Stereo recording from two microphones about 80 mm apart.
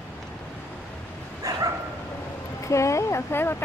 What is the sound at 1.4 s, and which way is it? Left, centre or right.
Dog, right.